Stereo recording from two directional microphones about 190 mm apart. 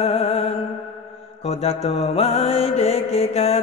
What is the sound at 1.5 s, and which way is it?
Mantra, 30° left (ahead or behind).